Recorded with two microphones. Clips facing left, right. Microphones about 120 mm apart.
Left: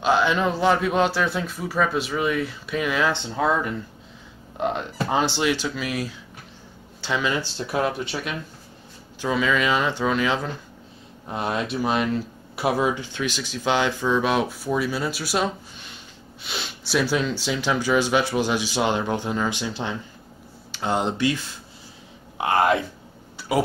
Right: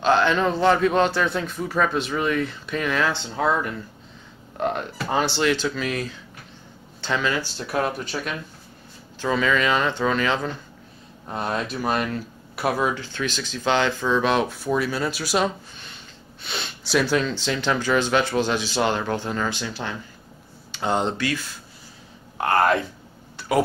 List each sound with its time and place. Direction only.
0.0 s speech: 10° left (ahead or behind)
3.1 s speech: 20° left (ahead or behind)
20.7 s speech: 5° left (ahead or behind)
21.2 s speech: 20° left (ahead or behind)